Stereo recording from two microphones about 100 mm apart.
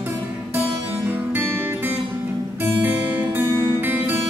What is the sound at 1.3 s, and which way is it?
Music, 20° right (ahead or behind).